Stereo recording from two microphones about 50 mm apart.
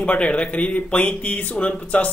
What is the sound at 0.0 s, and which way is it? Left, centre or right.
A man's voice, left.